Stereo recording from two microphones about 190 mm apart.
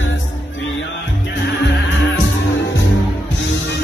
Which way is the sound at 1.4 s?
70° left (ahead or behind).